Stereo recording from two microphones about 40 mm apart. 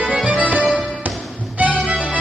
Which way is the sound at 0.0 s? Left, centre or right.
Right.